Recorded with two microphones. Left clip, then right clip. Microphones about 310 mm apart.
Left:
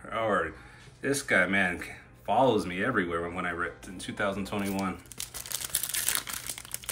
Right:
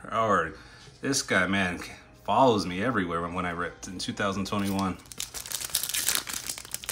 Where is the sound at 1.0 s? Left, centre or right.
Centre.